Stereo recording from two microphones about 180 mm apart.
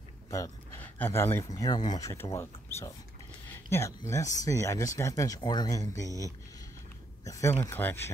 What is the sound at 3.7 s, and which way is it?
Speech, 15° left (ahead or behind).